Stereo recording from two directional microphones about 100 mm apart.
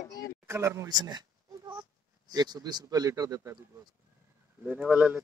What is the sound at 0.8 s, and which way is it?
Speech, 45° right (ahead or behind).